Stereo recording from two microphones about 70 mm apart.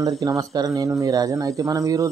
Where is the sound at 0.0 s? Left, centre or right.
Right.